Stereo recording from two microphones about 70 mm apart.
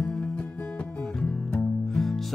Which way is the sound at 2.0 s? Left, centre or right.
Centre.